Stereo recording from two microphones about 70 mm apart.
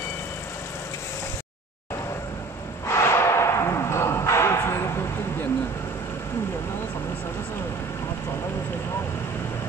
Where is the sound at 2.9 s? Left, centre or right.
Left.